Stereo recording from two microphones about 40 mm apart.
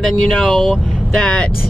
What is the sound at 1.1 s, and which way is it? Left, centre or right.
Speech, left.